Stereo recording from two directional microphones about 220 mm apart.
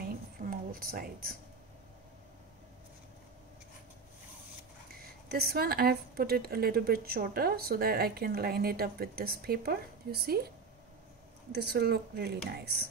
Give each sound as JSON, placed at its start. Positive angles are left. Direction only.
{"t": 0.0, "sound": "a sound", "side_deg": -40}
{"t": 5.3, "sound": "a woman's voice", "side_deg": -45}
{"t": 11.5, "sound": "a woman's voice", "side_deg": -45}